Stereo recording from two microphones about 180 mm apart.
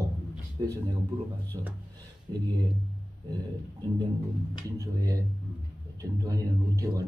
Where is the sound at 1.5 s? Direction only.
25° right (ahead or behind).